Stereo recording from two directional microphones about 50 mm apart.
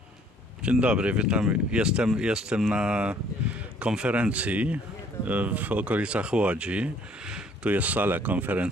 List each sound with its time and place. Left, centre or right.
0.6 s speech: right
7.7 s speech: right